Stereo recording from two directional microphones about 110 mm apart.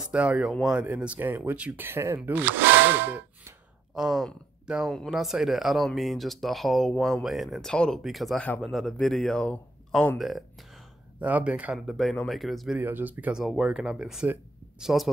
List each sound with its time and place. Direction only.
0.1 s speech: 10° right (ahead or behind)
0.5 s speech: centre (ahead or behind)
0.7 s speech: 10° right (ahead or behind)
3.9 s speech: 5° right (ahead or behind)
11.1 s speech: 15° right (ahead or behind)
11.8 s speech: centre (ahead or behind)
12.7 s speech: 15° right (ahead or behind)
13.4 s speech: 5° right (ahead or behind)